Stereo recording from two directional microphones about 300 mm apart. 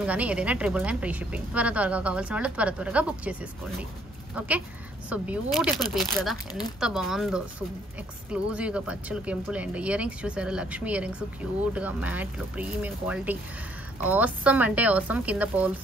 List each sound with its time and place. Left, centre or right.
0.0 s a woman's voice: centre
4.4 s a woman's voice: centre